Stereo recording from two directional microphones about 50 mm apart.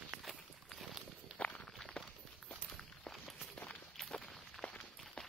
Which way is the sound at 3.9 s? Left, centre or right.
Centre.